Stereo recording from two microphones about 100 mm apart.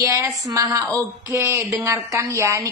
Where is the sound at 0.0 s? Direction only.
30° right (ahead or behind).